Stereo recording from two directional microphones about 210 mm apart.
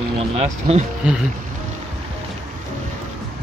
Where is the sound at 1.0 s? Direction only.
5° right (ahead or behind).